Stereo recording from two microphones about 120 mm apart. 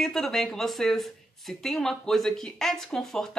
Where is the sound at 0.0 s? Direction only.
Centre (ahead or behind).